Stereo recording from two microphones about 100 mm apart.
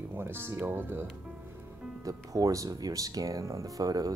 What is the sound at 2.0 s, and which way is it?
Speech, 35° right (ahead or behind).